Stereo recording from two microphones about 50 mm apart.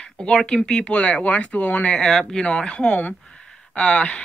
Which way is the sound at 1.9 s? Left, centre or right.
Centre.